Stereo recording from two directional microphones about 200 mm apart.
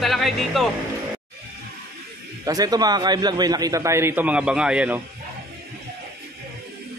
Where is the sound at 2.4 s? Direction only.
20° right (ahead or behind).